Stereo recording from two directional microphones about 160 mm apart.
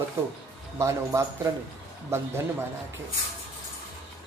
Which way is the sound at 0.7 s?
15° right (ahead or behind).